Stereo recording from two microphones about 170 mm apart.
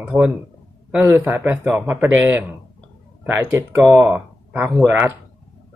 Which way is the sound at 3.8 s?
Centre (ahead or behind).